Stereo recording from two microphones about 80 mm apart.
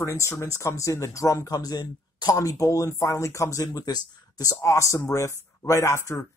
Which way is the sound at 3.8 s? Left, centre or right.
Left.